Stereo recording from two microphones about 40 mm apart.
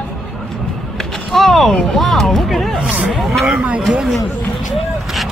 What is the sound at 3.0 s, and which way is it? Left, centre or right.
Speech, centre.